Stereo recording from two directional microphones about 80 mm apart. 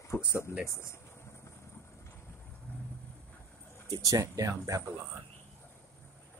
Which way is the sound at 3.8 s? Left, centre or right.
Right.